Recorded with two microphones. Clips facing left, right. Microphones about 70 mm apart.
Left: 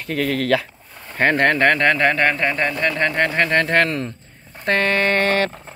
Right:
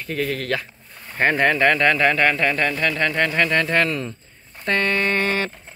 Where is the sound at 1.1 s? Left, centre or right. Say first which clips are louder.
Left 2 dB; left.